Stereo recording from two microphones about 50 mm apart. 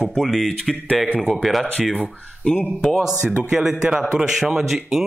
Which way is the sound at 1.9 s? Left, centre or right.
Centre.